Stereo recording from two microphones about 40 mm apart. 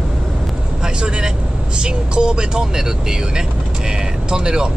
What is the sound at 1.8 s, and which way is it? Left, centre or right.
Speech, right.